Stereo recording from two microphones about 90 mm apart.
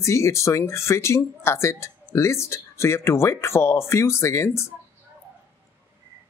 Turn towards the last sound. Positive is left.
turn(degrees=30)  # may be behind; listen again after turning